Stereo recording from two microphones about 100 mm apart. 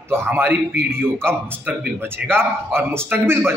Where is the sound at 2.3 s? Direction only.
25° right (ahead or behind).